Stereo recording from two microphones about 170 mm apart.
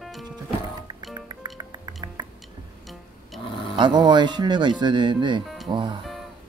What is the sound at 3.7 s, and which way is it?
Speech, 25° right (ahead or behind).